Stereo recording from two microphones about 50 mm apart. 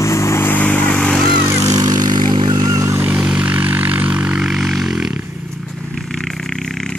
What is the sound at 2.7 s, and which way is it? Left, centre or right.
Vehicle, right.